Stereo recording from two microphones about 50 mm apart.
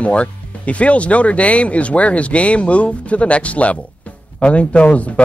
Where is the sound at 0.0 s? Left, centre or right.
Left.